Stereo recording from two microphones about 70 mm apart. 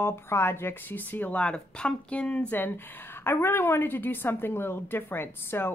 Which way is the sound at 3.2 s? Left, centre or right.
Left.